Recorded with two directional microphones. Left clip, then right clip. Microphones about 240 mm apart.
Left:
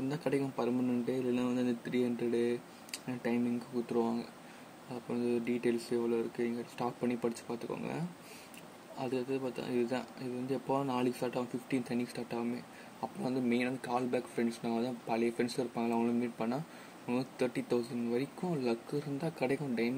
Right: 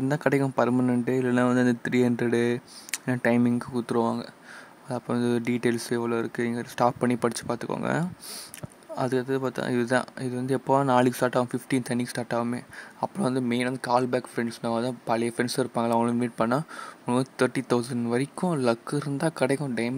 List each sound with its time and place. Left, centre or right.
0.1 s speech: right
5.1 s speech: right